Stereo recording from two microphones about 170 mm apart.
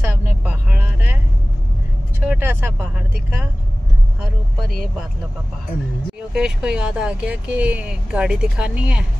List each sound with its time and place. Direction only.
0.0 s vehicle: 10° right (ahead or behind)
2.1 s speech: 10° right (ahead or behind)
4.2 s vehicle: centre (ahead or behind)
6.3 s speech: 5° right (ahead or behind)